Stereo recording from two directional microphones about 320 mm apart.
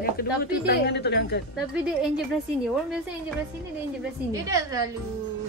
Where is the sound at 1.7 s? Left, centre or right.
Centre.